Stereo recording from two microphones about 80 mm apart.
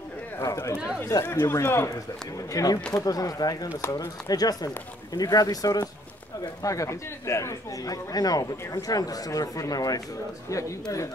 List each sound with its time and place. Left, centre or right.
0.4 s speech: left
2.5 s speech: left